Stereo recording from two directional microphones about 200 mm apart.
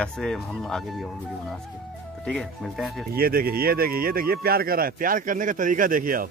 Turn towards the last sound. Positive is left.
turn(degrees=-45)  # may be behind; listen again after turning